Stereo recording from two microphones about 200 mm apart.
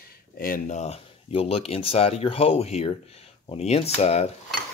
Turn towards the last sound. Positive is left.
turn(degrees=30)  # may be behind; listen again after turning